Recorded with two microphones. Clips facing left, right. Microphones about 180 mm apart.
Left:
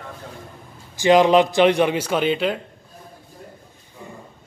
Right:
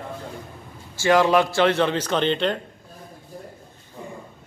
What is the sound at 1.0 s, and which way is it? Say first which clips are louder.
Speech: left 3 dB; 20° left (ahead or behind).